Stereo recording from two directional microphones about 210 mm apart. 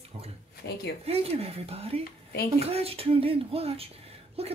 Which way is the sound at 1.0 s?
30° right (ahead or behind).